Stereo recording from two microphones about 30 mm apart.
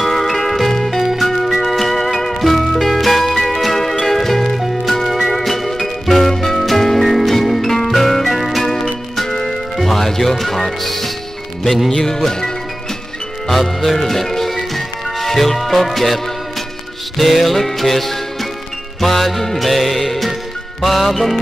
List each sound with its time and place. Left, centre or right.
0.0 s music: centre
9.2 s music: centre
11.9 s music: centre
13.5 s speech: centre
15.1 s music: centre
17.2 s music: centre